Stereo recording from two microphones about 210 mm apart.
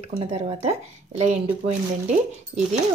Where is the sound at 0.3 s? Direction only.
30° right (ahead or behind).